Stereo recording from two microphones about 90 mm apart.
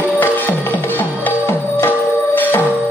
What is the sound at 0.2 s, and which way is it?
Music, 20° left (ahead or behind).